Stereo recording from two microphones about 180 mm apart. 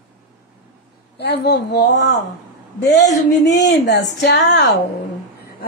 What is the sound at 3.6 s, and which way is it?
Speech, 70° left (ahead or behind).